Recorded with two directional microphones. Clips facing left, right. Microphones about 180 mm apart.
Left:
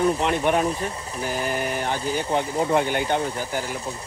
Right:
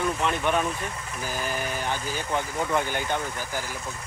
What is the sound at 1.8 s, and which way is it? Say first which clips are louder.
Speech: left 5 dB; 20° left (ahead or behind).